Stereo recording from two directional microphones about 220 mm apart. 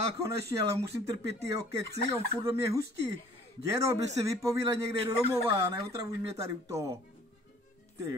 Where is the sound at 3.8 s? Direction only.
15° right (ahead or behind).